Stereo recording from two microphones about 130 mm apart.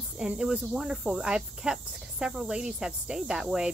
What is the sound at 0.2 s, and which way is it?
Speech, 5° right (ahead or behind).